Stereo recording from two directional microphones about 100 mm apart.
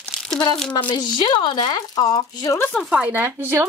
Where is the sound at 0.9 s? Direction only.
45° left (ahead or behind).